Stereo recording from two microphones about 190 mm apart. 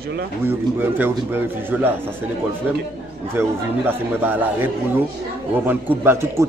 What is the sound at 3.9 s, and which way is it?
A man's voice, 10° right (ahead or behind).